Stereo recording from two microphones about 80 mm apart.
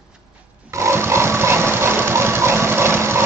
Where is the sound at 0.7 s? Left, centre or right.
Right.